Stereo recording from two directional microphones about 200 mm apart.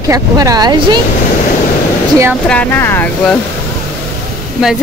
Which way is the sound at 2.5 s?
10° left (ahead or behind).